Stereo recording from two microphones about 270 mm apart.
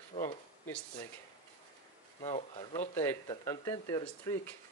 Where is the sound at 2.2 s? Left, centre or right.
Centre.